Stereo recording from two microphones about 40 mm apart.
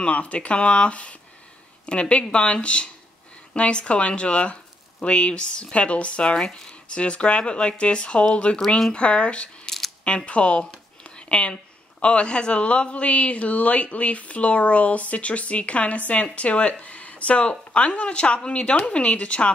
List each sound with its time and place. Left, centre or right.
0.0 s speech: left
10.0 s a sound: left
12.0 s speech: left